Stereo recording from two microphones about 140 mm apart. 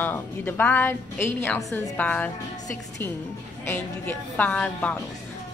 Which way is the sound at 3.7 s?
10° left (ahead or behind).